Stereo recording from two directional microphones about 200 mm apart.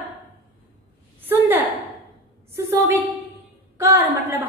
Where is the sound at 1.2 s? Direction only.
10° right (ahead or behind).